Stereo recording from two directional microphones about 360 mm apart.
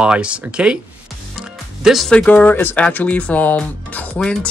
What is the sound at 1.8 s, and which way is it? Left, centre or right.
Speech, centre.